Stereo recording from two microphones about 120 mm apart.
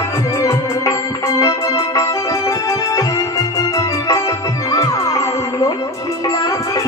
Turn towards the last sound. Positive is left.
turn(degrees=30)  # may be behind; listen again after turning